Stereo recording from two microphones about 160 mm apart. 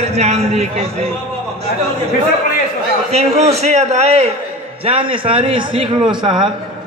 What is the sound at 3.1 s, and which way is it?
A man's voice, 45° right (ahead or behind).